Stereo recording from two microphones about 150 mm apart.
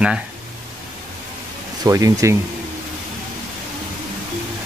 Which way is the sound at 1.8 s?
20° right (ahead or behind).